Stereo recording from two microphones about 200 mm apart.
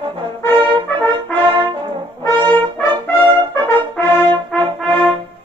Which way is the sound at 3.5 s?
10° left (ahead or behind).